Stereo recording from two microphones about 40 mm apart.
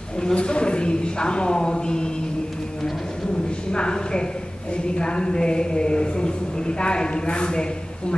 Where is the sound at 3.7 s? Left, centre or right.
Left.